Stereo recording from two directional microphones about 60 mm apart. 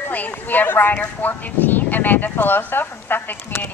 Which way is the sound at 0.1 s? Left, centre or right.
Left.